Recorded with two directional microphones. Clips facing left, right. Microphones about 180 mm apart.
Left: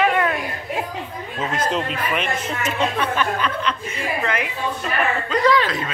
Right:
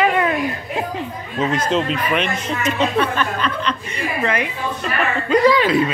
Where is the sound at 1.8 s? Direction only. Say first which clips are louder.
Right 3 dB; 5° left (ahead or behind).